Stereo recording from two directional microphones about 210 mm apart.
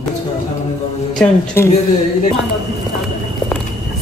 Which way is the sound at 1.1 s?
10° left (ahead or behind).